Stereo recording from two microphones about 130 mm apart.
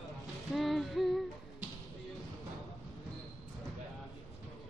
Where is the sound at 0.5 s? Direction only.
Centre (ahead or behind).